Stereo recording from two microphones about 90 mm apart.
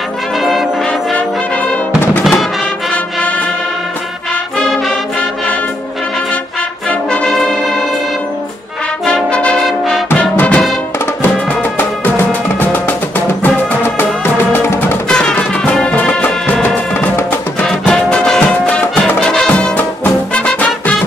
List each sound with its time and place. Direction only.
0.4 s brass instrument: 5° right (ahead or behind)
4.6 s music: centre (ahead or behind)
7.2 s brass instrument: centre (ahead or behind)
9.0 s brass instrument: 10° left (ahead or behind)
10.3 s music: 15° left (ahead or behind)
12.3 s music: 20° left (ahead or behind)
14.5 s music: 25° left (ahead or behind)
15.0 s music: 10° left (ahead or behind)
17.6 s music: 5° left (ahead or behind)